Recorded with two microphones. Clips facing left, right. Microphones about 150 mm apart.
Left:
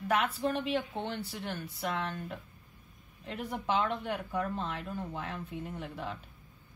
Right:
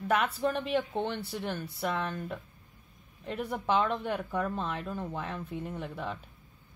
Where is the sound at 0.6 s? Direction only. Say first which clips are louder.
Right 3 dB; 50° right (ahead or behind).